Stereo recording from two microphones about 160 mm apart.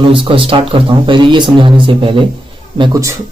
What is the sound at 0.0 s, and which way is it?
A man's voice, 30° right (ahead or behind).